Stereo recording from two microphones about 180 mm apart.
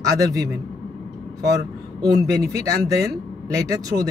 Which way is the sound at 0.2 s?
20° right (ahead or behind).